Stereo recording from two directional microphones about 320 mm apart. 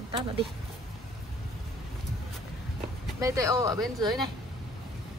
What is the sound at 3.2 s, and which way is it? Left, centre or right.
Speech, centre.